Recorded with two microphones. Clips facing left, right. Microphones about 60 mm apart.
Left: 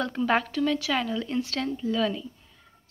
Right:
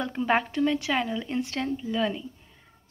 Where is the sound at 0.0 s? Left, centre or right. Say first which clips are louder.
Even; right.